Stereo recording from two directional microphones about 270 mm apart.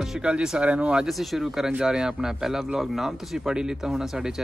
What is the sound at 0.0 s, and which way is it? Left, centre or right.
Speech, centre.